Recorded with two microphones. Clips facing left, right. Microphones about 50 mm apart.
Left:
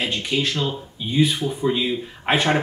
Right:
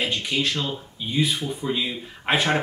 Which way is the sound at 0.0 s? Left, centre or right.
Centre.